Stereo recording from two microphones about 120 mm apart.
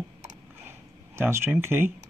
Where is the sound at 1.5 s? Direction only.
20° right (ahead or behind).